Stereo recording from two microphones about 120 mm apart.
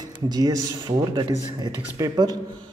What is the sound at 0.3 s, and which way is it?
A man's voice, 35° right (ahead or behind).